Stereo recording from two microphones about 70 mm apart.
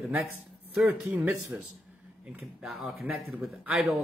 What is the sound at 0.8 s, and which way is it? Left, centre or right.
Speech, right.